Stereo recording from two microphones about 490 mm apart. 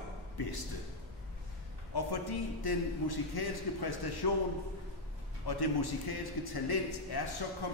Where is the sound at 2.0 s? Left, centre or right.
Left.